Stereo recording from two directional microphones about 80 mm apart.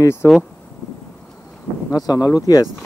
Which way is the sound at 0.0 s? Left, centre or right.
Left.